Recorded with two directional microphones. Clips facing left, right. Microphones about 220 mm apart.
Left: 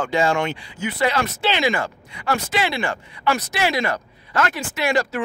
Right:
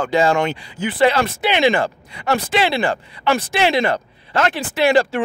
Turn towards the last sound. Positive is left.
turn(degrees=-30)  # may be behind; listen again after turning